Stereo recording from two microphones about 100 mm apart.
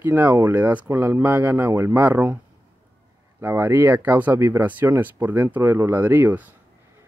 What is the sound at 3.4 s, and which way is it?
Speech, 25° right (ahead or behind).